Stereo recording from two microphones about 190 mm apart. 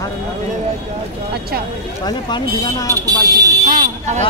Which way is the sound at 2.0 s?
20° left (ahead or behind).